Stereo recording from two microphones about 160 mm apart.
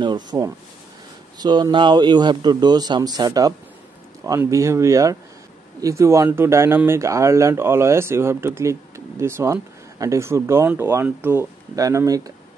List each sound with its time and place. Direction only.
0.0 s speech: 25° right (ahead or behind)